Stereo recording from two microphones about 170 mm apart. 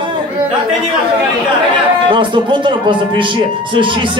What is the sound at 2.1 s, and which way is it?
Speech, 30° right (ahead or behind).